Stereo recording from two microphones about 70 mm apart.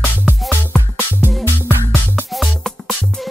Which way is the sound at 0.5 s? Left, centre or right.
Right.